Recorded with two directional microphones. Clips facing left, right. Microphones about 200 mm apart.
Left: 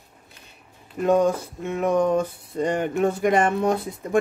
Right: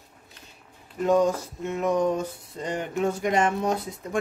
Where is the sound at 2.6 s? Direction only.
55° left (ahead or behind).